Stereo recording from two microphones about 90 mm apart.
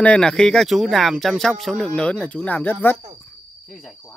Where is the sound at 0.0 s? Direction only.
10° left (ahead or behind).